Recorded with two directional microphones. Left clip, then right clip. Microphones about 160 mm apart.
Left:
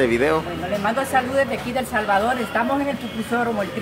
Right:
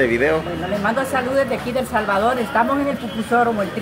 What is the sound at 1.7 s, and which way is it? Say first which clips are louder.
Speech: even; 5° right (ahead or behind).